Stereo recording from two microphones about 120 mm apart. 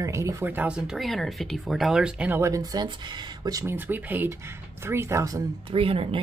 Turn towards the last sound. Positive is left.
turn(degrees=-50)  # may be behind; listen again after turning